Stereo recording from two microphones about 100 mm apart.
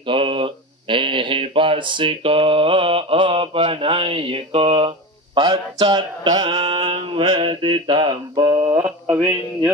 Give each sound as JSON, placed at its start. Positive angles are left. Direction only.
{"t": 0.0, "sound": "speech", "side_deg": -60}
{"t": 5.8, "sound": "a sound", "side_deg": -50}
{"t": 6.5, "sound": "mantra", "side_deg": -60}
{"t": 9.1, "sound": "mantra", "side_deg": -20}